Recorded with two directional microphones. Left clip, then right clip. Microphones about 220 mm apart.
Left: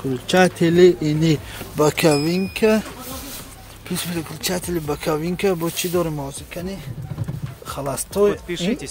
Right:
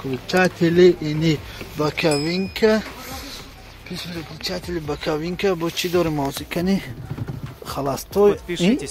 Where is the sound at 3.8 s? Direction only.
50° left (ahead or behind).